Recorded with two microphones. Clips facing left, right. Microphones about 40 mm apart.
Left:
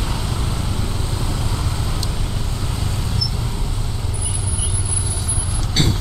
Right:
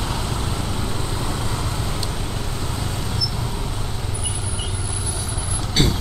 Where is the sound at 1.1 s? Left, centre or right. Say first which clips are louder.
Even; right.